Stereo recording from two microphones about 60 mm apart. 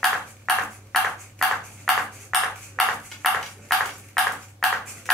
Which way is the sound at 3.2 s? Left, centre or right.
Centre.